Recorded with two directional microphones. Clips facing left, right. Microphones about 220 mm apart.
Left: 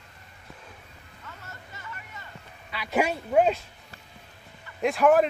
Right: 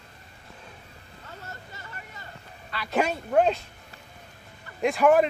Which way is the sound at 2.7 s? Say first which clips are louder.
Even; 10° left (ahead or behind).